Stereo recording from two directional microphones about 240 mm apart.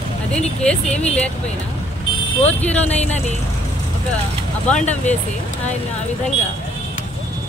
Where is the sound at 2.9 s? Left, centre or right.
Left.